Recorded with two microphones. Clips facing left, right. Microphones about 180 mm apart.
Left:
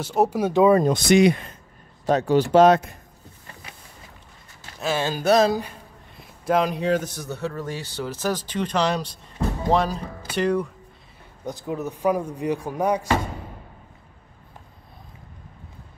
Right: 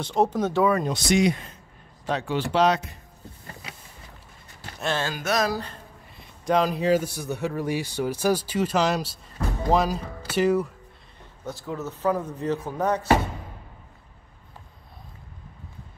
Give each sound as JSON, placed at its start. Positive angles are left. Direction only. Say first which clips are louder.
{"t": 0.0, "sound": "speech", "louder": "left 2 dB", "side_deg": 5}
{"t": 0.8, "sound": "speech", "louder": "left 5 dB", "side_deg": 55}
{"t": 2.0, "sound": "speech", "louder": "left 7 dB", "side_deg": 40}
{"t": 4.7, "sound": "speech", "louder": "left 2 dB", "side_deg": 5}
{"t": 5.1, "sound": "speech", "louder": "left 11 dB", "side_deg": 30}
{"t": 6.1, "sound": "a man's voice", "louder": "left 1 dB", "side_deg": 0}
{"t": 11.4, "sound": "speech", "louder": "left 3 dB", "side_deg": 15}